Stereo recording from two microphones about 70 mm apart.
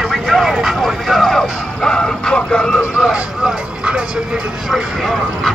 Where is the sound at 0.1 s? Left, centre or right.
Centre.